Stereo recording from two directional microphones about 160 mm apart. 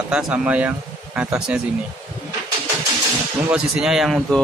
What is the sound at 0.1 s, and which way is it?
Speech, 5° right (ahead or behind).